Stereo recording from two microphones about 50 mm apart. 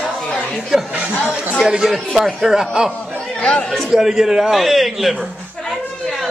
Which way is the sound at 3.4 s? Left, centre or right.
Left.